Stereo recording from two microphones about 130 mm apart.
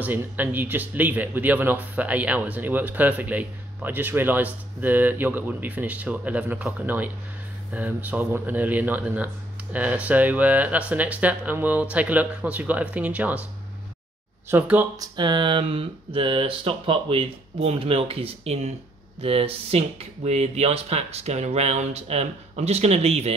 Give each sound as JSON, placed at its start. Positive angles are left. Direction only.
{"t": 0.0, "sound": "speech", "side_deg": -15}
{"t": 14.5, "sound": "speech", "side_deg": -15}
{"t": 15.0, "sound": "speech", "side_deg": -35}